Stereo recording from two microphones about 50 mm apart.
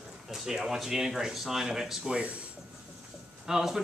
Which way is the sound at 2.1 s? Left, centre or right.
Right.